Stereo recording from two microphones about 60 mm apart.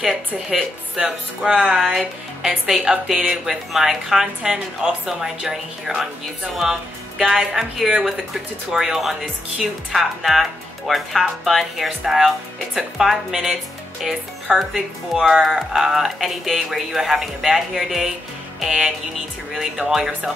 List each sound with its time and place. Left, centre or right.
0.0 s speech: centre
1.0 s a woman's voice: centre